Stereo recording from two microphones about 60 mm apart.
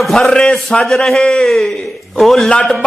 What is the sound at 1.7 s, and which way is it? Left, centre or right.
Speech, centre.